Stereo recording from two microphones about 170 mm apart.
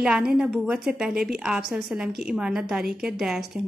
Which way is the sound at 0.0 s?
5° right (ahead or behind).